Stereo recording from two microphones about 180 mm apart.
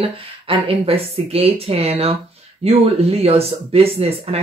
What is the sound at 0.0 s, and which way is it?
Speech, 30° right (ahead or behind).